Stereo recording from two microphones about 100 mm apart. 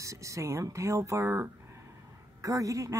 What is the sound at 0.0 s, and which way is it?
Speech, 30° right (ahead or behind).